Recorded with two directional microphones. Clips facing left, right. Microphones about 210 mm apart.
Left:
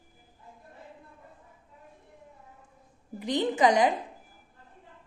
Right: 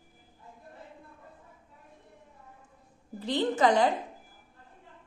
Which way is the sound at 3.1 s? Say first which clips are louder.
Left 1 dB; 15° left (ahead or behind).